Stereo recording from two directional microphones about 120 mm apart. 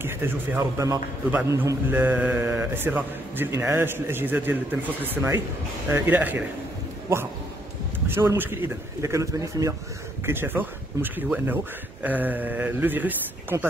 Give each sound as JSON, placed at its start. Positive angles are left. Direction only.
{"t": 0.0, "sound": "a man's voice", "side_deg": -15}
{"t": 8.1, "sound": "a man's voice", "side_deg": -20}